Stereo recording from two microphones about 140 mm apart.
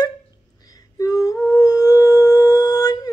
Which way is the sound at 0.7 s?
25° left (ahead or behind).